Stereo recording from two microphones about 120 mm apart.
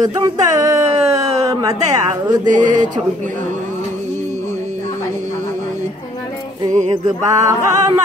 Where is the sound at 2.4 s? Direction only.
90° right.